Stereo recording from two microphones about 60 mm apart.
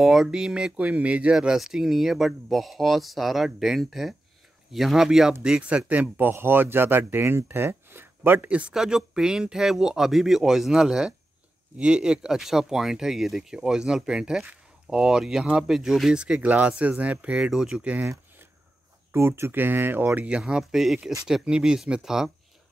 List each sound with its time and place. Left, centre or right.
0.0 s speech: centre
1.3 s speech: centre
5.4 s speech: centre; by 8.5 s right
8.5 s speech: right
8.7 s speech: centre
16.3 s speech: right
17.5 s speech: centre
17.8 s speech: right
19.1 s speech: right
20.2 s speech: centre